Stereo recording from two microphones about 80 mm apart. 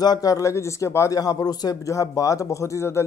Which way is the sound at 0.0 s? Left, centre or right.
Left.